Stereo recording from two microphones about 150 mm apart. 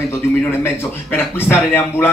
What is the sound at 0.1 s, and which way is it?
A man's voice, 15° left (ahead or behind).